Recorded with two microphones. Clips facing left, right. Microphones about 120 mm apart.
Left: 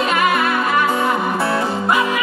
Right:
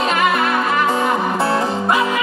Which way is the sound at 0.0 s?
25° right (ahead or behind).